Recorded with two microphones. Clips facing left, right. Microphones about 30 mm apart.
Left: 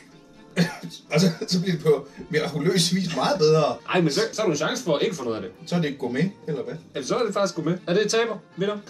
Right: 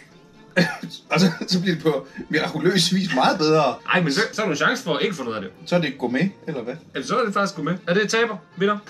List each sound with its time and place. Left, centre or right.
0.6 s a man's voice: right
4.3 s speech: right
5.7 s speech: right
7.0 s speech: centre